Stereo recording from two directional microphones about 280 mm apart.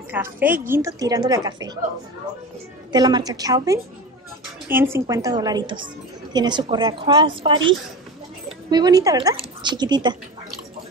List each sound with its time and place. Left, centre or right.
0.1 s a woman's voice: centre
2.9 s a woman's voice: centre